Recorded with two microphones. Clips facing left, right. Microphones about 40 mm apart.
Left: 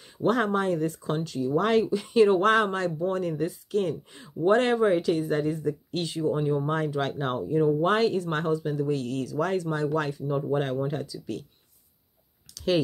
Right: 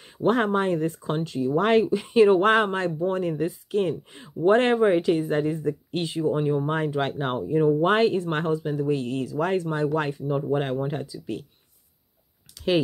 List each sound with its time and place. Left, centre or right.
0.0 s speech: right
12.5 s clicking: right